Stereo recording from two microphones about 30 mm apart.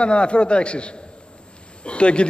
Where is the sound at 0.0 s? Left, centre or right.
Left.